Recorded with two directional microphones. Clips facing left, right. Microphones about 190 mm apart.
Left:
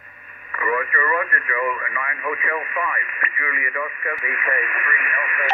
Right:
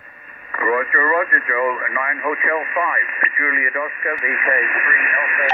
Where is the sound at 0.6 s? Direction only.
35° right (ahead or behind).